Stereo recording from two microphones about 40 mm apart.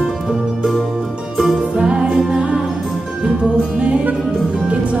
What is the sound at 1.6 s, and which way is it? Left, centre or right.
Music, right.